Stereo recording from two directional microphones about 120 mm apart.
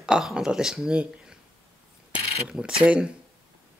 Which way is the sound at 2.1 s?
10° right (ahead or behind).